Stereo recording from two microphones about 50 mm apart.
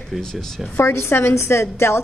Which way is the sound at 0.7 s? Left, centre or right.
Left.